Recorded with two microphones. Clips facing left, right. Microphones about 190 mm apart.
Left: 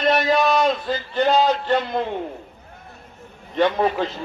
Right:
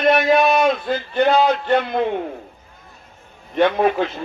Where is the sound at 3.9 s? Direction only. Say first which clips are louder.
Right 3 dB; 55° right (ahead or behind).